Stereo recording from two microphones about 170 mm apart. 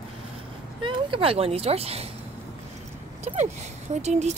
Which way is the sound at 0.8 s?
30° right (ahead or behind).